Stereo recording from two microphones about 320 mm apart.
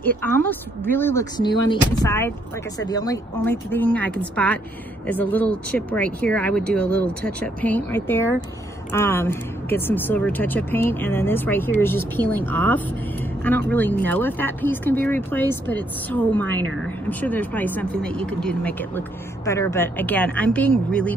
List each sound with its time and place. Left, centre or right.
0.2 s speech: centre